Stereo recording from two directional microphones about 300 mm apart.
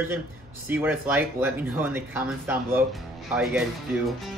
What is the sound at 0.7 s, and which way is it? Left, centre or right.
Speech, centre.